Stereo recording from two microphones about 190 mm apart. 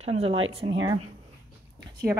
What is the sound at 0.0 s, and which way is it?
Speech, 35° right (ahead or behind).